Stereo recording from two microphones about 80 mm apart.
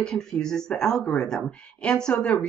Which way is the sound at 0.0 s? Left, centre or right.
Centre.